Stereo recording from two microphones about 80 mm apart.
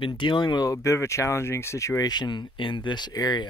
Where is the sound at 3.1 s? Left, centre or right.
Left.